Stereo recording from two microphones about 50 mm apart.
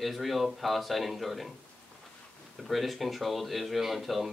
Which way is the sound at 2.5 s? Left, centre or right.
Centre.